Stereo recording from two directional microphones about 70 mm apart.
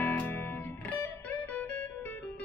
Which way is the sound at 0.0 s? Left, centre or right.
Left.